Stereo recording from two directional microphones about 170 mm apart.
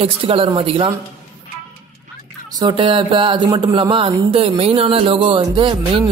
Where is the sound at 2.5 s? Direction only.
30° right (ahead or behind).